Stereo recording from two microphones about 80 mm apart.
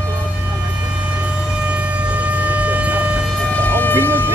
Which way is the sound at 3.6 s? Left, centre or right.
Left.